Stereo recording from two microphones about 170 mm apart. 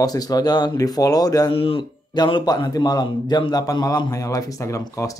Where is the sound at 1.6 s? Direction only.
35° left (ahead or behind).